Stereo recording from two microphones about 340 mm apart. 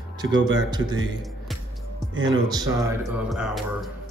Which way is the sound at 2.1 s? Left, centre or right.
Right.